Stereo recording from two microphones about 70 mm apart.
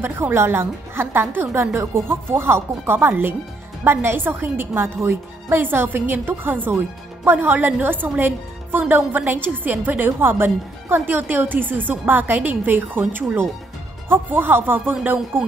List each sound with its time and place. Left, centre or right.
0.0 s a woman's voice: right